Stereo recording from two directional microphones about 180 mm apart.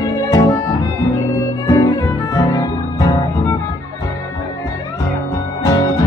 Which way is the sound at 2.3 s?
20° left (ahead or behind).